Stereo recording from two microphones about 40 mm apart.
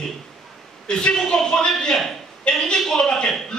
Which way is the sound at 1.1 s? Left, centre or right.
Centre.